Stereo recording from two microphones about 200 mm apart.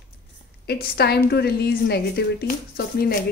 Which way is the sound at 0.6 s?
50° left (ahead or behind).